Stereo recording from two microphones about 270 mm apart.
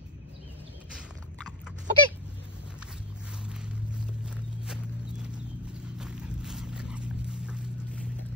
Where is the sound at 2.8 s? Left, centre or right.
Centre.